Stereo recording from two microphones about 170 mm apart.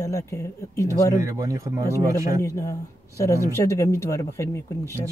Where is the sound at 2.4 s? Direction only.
15° left (ahead or behind).